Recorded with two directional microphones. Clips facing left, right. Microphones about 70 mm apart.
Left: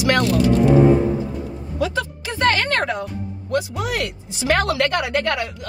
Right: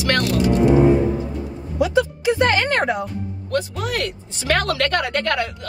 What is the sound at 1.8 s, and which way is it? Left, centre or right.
Speech, centre.